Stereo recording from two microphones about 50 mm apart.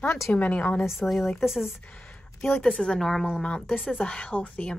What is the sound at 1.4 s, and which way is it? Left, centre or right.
Speech, centre.